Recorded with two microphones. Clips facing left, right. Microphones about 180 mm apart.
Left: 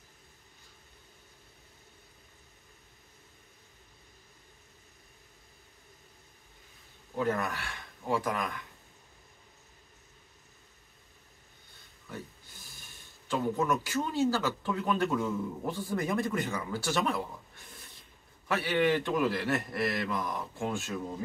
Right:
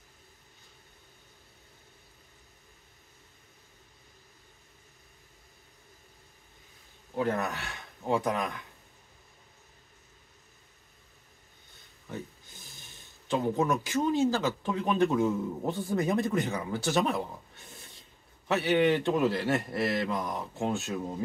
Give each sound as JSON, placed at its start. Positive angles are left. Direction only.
{"t": 7.2, "sound": "speech", "side_deg": -20}
{"t": 12.1, "sound": "speech", "side_deg": -20}
{"t": 18.5, "sound": "a man's voice", "side_deg": -20}